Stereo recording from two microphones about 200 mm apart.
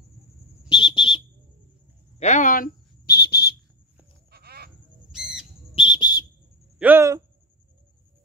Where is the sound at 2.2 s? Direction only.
35° left (ahead or behind); by 3.6 s 55° left (ahead or behind).